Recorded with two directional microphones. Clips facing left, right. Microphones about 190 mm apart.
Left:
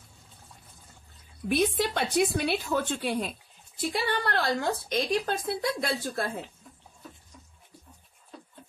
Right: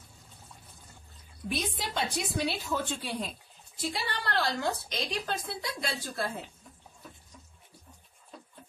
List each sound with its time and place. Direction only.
1.5 s a woman's voice: 60° left (ahead or behind)